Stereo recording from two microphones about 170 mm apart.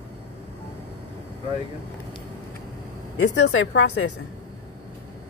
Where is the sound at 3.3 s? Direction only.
90° left.